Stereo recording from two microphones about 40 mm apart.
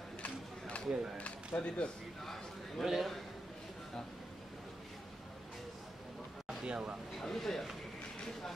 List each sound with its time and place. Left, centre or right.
0.2 s a sound: left
0.8 s speech: centre
1.5 s speech: left
2.8 s a man's voice: centre
6.6 s speech: right
7.2 s speech: centre